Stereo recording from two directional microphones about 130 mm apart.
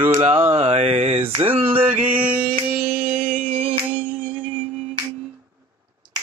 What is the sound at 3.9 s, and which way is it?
Music, 10° right (ahead or behind).